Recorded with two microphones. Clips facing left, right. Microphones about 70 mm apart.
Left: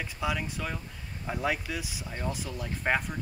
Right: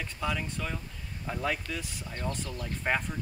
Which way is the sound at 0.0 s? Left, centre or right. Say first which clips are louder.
Left 1 dB; centre.